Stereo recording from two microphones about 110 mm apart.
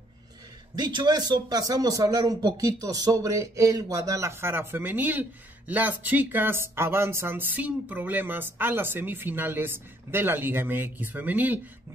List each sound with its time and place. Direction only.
0.7 s speech: 40° right (ahead or behind); by 11.6 s 15° right (ahead or behind)